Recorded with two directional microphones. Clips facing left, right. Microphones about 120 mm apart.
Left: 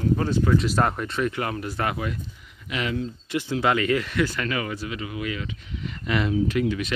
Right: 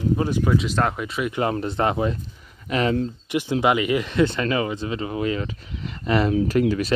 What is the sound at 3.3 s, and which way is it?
Speech, 15° right (ahead or behind).